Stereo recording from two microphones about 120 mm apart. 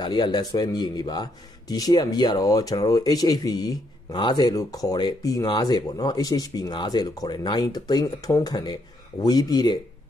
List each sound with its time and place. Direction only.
0.0 s speech: 35° left (ahead or behind)